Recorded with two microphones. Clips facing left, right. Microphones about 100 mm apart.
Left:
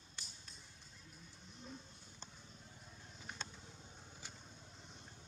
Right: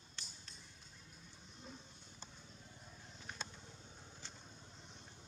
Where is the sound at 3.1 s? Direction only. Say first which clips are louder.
Even; centre (ahead or behind).